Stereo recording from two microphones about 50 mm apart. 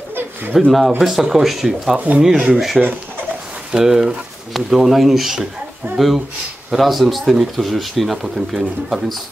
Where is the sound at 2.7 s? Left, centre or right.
Right.